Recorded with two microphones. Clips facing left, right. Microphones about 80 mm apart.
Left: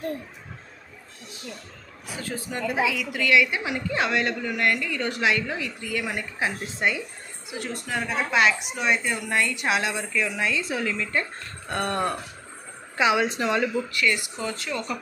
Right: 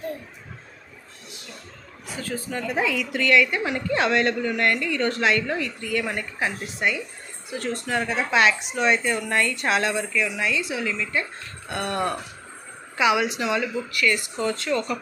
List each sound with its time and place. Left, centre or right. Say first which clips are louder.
2.3 s a woman's voice: right 3 dB; centre
2.7 s a woman's voice: right 1 dB; centre; by 7.0 s left
7.4 s a woman's voice: right 4 dB; centre
9.9 s speech: right 2 dB; left
14.4 s a woman's voice: right 6 dB; centre